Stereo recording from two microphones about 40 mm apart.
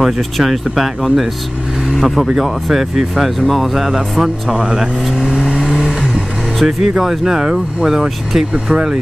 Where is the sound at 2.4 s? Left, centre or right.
Centre.